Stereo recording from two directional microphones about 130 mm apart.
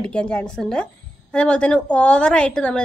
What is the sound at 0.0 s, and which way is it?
A woman's voice, 5° left (ahead or behind).